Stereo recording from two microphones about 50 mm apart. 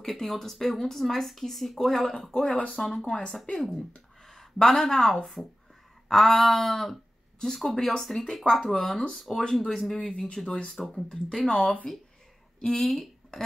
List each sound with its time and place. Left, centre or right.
0.0 s speech: centre
9.9 s speech: left; by 13.4 s centre